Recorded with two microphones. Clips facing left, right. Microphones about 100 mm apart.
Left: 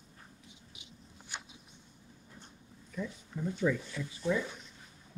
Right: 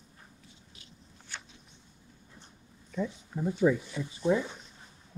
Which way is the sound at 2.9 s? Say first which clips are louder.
Right 6 dB; 30° right (ahead or behind).